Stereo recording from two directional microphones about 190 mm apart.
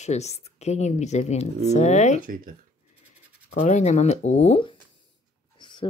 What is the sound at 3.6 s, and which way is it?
Speech, 40° left (ahead or behind).